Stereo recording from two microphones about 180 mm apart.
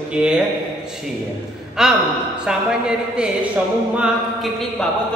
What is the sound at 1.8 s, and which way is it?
Speech, 5° right (ahead or behind).